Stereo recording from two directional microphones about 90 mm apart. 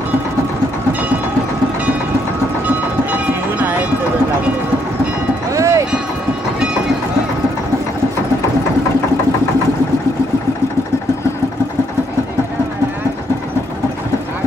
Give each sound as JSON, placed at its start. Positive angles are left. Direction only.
{"t": 3.1, "sound": "train", "side_deg": -20}
{"t": 5.5, "sound": "music", "side_deg": -35}